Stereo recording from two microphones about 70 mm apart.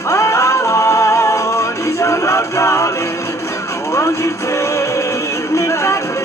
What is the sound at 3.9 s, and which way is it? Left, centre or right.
Music, left.